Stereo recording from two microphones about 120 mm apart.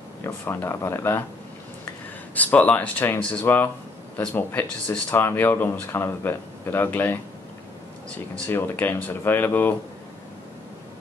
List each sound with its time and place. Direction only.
0.2 s speech: 20° left (ahead or behind)
2.3 s speech: 15° left (ahead or behind)
8.5 s speech: 15° left (ahead or behind)